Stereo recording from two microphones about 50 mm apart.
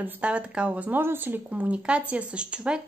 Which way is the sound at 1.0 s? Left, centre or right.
Right.